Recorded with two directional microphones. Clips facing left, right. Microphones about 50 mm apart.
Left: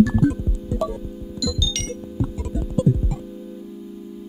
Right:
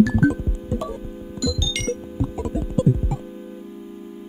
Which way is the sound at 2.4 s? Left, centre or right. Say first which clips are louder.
Right 1 dB; right.